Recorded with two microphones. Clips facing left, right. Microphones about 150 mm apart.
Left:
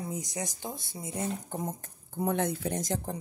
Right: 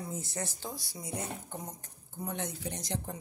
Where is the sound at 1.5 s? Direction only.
50° left (ahead or behind).